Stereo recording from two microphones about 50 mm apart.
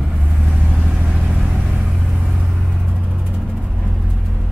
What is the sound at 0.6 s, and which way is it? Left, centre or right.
Vehicle, centre.